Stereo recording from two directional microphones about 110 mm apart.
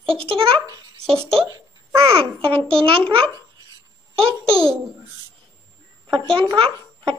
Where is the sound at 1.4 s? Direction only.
30° right (ahead or behind).